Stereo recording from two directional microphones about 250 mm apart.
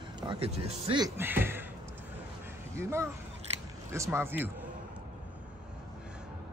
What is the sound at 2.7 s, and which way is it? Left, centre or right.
Speech, centre.